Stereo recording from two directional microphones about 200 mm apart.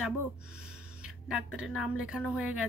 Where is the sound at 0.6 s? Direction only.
5° right (ahead or behind).